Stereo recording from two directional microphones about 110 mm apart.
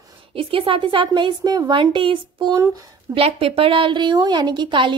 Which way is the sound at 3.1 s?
60° right (ahead or behind).